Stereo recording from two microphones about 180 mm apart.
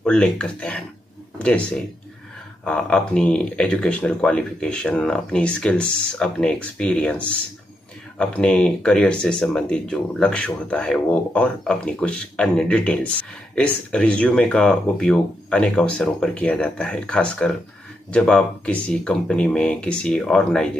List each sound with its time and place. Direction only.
0.0 s speech: 5° left (ahead or behind)